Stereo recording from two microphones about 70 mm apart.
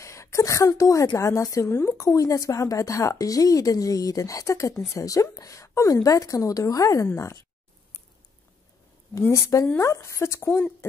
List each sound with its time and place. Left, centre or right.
0.0 s a sound: left
1.1 s a woman's voice: left
1.7 s speech: left
2.0 s a woman's voice: left
9.3 s a woman's voice: left